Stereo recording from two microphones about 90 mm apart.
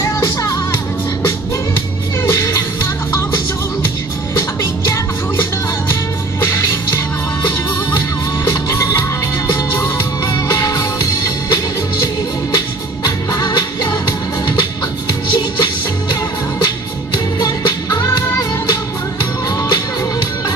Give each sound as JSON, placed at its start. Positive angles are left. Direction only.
{"t": 0.0, "sound": "music", "side_deg": 35}
{"t": 2.3, "sound": "music", "side_deg": 35}
{"t": 6.4, "sound": "music", "side_deg": 35}
{"t": 8.5, "sound": "music", "side_deg": 35}
{"t": 13.0, "sound": "music", "side_deg": 50}
{"t": 17.4, "sound": "music", "side_deg": 45}
{"t": 19.7, "sound": "music", "side_deg": 50}